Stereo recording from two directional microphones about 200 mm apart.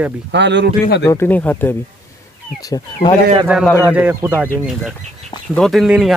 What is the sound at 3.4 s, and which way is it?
Speech, 5° right (ahead or behind).